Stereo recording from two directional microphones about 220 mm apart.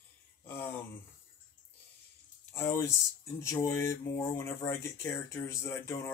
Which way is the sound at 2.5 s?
10° left (ahead or behind).